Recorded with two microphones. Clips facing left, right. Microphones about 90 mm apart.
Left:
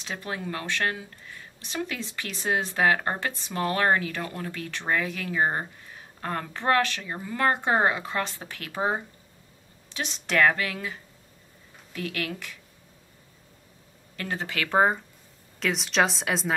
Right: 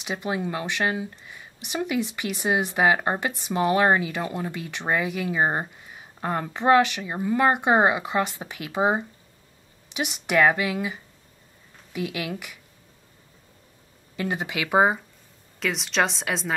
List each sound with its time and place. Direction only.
0.0 s speech: 15° right (ahead or behind)
14.1 s speech: 15° right (ahead or behind)
15.6 s a woman's voice: centre (ahead or behind)